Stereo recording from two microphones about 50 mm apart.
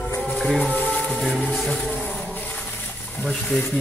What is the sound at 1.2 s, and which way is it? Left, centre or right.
Speech, centre.